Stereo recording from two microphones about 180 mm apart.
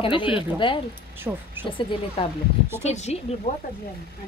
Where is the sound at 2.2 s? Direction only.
30° left (ahead or behind).